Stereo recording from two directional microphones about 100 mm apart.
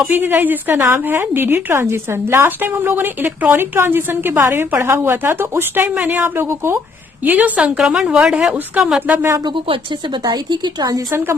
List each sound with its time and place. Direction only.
0.0 s a woman's voice: 20° right (ahead or behind); by 9.0 s 5° right (ahead or behind)
9.0 s speech: 20° right (ahead or behind)
9.4 s a woman's voice: 50° right (ahead or behind); by 11.3 s 30° right (ahead or behind)